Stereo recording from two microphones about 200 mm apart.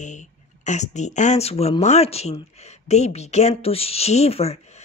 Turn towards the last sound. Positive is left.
turn(degrees=30)  # may be behind; listen again after turning